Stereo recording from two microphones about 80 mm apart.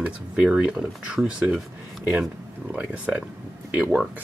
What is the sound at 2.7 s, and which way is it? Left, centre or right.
Speech, centre.